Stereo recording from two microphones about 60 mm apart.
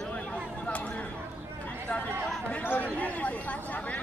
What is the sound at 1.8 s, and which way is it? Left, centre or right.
Chatter, left.